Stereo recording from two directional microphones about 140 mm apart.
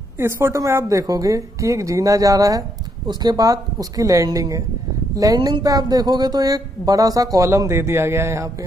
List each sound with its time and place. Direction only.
0.2 s speech: 20° right (ahead or behind)